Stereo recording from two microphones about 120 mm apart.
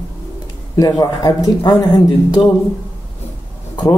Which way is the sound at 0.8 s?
35° left (ahead or behind).